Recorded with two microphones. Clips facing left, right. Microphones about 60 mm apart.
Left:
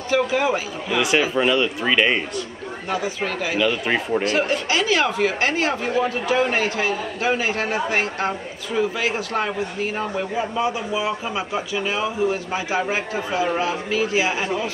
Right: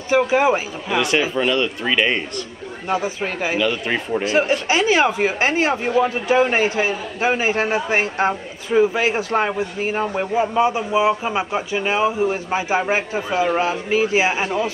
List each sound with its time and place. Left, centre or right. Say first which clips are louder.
0.1 s speech: right 4 dB; right
0.9 s a man's voice: even; centre
2.9 s speech: right 2 dB; right
3.5 s a man's voice: left 2 dB; centre
4.2 s speech: right 3 dB; right